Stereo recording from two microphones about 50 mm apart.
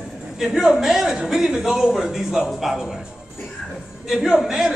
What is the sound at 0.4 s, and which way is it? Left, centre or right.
A man's voice, centre.